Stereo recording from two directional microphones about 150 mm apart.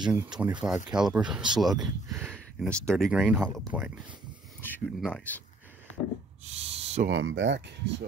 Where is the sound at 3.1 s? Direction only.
5° right (ahead or behind).